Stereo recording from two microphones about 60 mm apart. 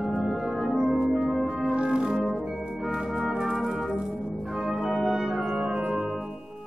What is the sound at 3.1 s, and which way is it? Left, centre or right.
Brass instrument, centre.